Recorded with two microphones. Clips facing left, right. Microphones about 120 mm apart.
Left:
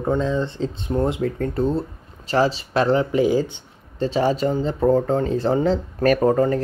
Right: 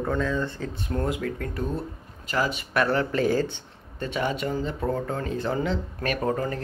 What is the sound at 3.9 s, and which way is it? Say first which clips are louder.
Speech: left 8 dB; 30° left (ahead or behind).